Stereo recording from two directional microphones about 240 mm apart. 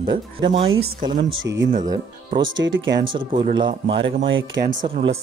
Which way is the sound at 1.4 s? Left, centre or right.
Right.